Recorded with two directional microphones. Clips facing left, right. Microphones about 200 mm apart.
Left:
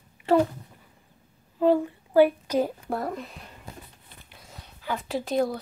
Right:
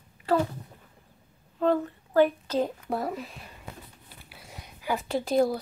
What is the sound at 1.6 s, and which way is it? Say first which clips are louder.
A woman's voice: left 3 dB; 10° left (ahead or behind).